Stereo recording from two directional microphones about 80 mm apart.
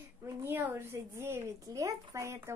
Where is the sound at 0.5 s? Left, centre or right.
Right.